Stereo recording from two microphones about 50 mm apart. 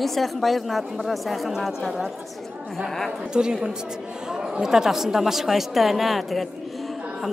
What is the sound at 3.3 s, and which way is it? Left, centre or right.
A woman's voice, centre.